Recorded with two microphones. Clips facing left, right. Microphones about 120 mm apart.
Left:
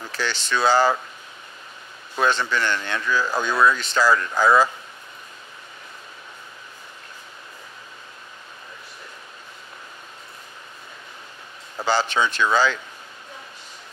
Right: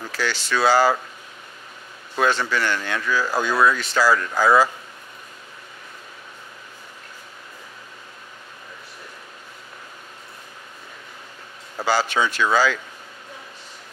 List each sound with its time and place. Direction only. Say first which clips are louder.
0.1 s speech: right 1 dB; 20° left (ahead or behind)
2.5 s speech: right 1 dB; 20° left (ahead or behind)
3.3 s speech: right 1 dB; 10° right (ahead or behind)
3.7 s speech: even; 20° left (ahead or behind)
11.8 s speech: even; 20° left (ahead or behind)